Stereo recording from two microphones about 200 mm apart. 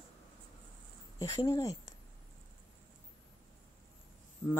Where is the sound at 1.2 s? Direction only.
15° left (ahead or behind).